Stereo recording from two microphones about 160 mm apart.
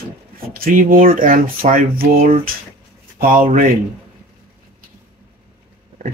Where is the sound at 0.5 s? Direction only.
60° right (ahead or behind).